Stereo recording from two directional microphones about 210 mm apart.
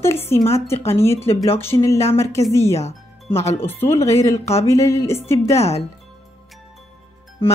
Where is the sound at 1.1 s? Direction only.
30° left (ahead or behind).